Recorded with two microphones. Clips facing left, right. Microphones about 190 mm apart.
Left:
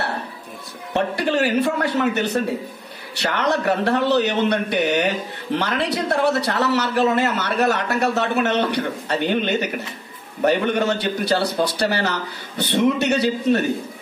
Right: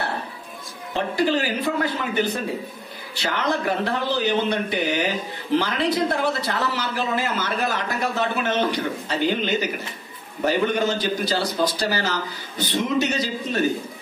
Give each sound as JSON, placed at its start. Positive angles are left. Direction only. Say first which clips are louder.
{"t": 0.9, "sound": "a man's voice", "louder": "left 1 dB", "side_deg": 70}
{"t": 3.2, "sound": "a man's voice", "louder": "left 3 dB", "side_deg": 70}